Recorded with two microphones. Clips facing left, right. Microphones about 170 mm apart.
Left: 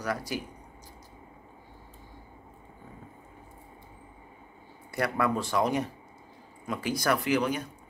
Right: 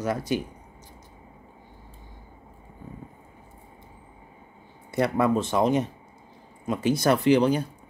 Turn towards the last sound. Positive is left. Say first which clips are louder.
# right 7 dB
turn(degrees=-30)  # may be behind; listen again after turning